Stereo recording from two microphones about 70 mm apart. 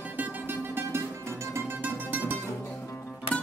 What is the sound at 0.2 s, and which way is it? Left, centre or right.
Music, right.